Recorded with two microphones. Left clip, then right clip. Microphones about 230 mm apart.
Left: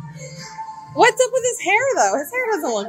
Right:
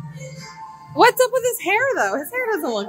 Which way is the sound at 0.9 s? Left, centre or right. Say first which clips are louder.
Even; right.